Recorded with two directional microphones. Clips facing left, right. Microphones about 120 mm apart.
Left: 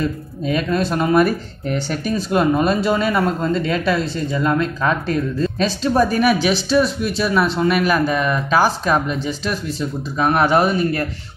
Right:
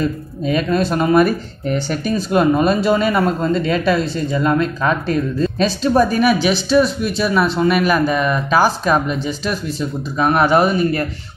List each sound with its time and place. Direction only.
0.5 s speech: 20° right (ahead or behind)
6.1 s speech: 5° left (ahead or behind)